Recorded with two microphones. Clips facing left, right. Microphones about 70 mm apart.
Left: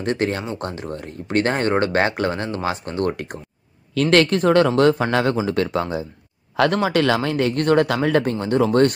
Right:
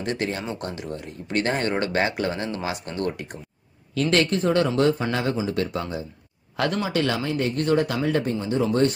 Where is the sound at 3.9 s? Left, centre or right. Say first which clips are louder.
Left 5 dB; left.